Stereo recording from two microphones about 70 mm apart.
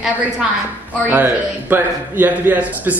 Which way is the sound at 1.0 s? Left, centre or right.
Right.